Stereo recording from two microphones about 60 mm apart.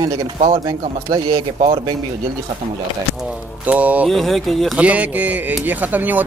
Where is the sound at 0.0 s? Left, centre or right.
Right.